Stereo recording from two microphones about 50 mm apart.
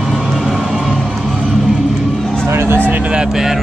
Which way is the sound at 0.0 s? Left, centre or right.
Centre.